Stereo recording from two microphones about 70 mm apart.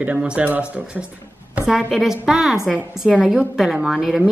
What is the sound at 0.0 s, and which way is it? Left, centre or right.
A woman's voice, right.